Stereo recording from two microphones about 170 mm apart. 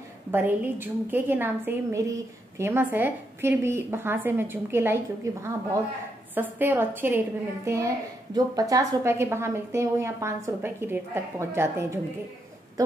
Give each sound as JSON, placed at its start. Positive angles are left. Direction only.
{"t": 0.3, "sound": "a woman's voice", "side_deg": -15}